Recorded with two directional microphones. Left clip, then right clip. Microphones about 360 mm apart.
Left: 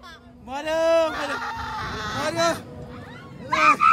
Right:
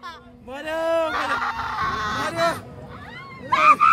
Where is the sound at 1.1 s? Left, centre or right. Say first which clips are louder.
Right 4 dB; centre.